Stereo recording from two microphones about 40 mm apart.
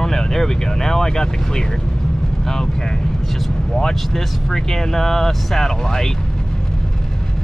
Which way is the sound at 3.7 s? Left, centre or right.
Centre.